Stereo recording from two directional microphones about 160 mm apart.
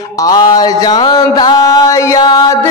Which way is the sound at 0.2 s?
25° left (ahead or behind).